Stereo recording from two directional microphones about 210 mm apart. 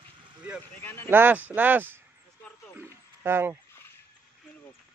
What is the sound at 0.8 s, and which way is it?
Speech, 10° left (ahead or behind).